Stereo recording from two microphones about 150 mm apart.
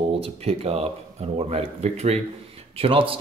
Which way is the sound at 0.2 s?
40° right (ahead or behind).